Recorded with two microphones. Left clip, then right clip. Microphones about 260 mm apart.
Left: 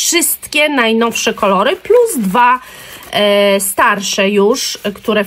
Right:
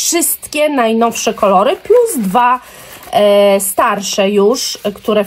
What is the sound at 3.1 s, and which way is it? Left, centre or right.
Speech, centre.